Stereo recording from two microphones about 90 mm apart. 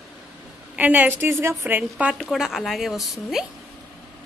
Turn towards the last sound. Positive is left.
turn(degrees=-5)  # may be behind; listen again after turning